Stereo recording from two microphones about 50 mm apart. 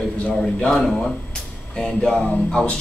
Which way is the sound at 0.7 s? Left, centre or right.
Centre.